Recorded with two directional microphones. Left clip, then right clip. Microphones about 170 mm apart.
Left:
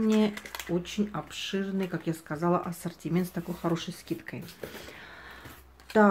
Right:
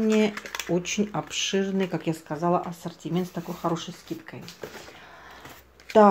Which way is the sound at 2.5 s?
15° left (ahead or behind).